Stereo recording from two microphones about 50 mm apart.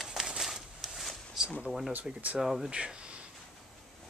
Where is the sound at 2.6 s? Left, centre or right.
Centre.